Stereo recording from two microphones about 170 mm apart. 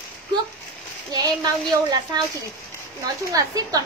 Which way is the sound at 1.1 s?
20° right (ahead or behind).